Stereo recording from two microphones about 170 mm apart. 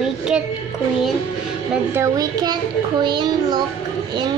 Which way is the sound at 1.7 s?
15° right (ahead or behind).